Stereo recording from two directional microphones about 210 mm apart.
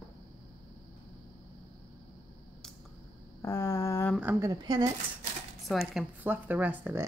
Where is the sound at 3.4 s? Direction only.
10° left (ahead or behind).